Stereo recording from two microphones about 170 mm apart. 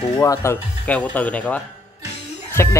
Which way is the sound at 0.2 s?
20° left (ahead or behind).